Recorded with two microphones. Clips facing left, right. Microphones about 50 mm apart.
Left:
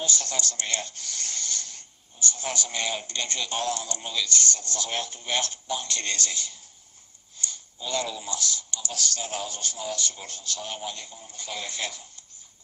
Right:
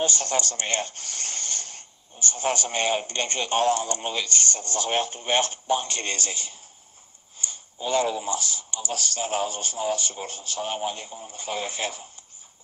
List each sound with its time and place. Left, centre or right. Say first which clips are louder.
0.0 s speech: right 5 dB; right